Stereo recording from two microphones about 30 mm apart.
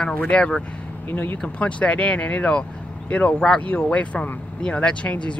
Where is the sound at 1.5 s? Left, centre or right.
Left.